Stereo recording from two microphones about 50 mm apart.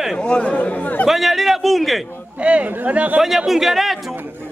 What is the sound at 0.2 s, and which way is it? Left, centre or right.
Speech, left.